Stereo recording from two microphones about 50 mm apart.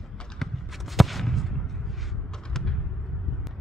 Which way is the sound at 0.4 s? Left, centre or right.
Centre.